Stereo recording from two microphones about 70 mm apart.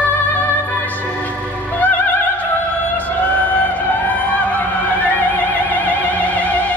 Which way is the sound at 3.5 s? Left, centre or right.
Left.